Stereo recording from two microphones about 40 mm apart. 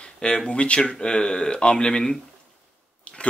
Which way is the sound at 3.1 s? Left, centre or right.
Left.